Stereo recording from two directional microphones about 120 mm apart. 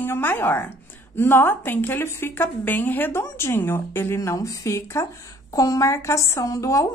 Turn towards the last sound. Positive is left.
turn(degrees=25)  # may be behind; listen again after turning